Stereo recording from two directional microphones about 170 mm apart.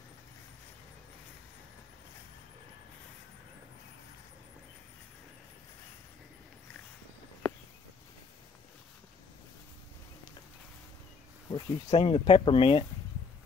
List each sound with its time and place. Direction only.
11.5 s speech: 35° left (ahead or behind)